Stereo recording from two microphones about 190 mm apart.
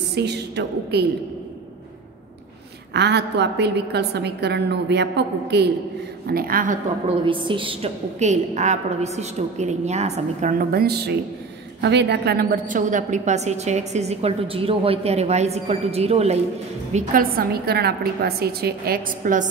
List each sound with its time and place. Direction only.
0.1 s a woman's voice: 60° right (ahead or behind)
2.9 s a woman's voice: 60° right (ahead or behind)
7.2 s a woman's voice: 25° right (ahead or behind)
10.6 s a woman's voice: 55° right (ahead or behind); by 16.3 s 35° right (ahead or behind)
16.9 s a woman's voice: 50° right (ahead or behind)